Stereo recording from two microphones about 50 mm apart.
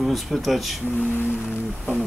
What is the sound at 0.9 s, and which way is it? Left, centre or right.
Music, left.